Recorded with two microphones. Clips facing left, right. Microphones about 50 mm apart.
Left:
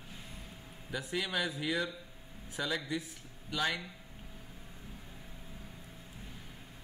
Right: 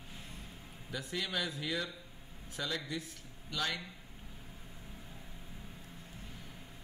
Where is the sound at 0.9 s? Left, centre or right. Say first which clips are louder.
Left 3 dB; centre.